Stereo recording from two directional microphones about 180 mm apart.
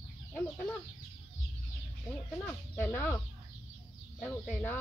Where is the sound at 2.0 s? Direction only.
10° left (ahead or behind).